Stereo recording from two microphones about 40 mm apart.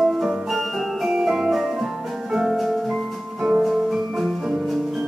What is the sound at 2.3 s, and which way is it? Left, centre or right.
Music, centre.